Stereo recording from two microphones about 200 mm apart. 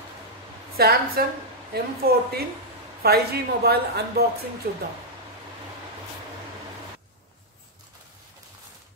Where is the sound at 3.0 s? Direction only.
50° right (ahead or behind).